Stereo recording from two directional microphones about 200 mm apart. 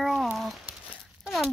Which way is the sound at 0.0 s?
Centre (ahead or behind).